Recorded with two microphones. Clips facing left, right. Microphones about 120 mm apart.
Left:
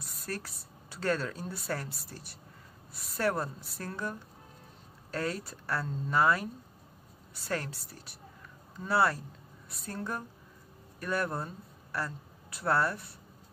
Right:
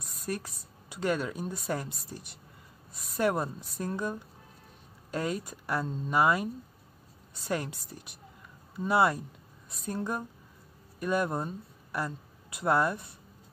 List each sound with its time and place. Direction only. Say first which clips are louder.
0.3 s speech: right 4 dB; 15° right (ahead or behind)